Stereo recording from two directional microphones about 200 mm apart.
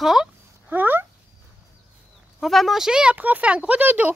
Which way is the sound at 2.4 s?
Centre (ahead or behind).